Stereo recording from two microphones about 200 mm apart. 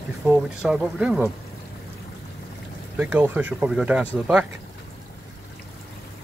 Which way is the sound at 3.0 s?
10° right (ahead or behind).